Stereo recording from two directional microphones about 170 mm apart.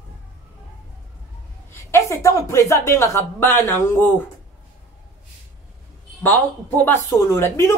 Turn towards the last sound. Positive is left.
turn(degrees=15)  # may be behind; listen again after turning